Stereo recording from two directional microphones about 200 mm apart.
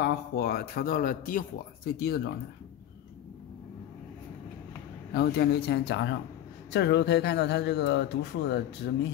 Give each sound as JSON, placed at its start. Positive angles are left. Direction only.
{"t": 0.0, "sound": "speech", "side_deg": 50}
{"t": 5.1, "sound": "speech", "side_deg": 50}